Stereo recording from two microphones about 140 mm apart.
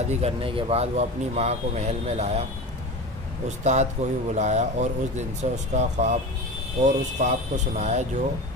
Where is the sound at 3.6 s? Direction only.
55° right (ahead or behind).